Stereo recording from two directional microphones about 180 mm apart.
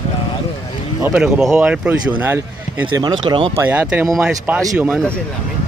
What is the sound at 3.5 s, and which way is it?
Speech, 15° right (ahead or behind).